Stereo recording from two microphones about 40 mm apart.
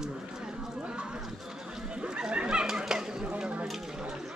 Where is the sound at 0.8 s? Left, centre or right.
Right.